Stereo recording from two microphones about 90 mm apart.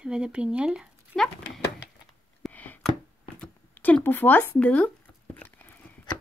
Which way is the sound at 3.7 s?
20° left (ahead or behind).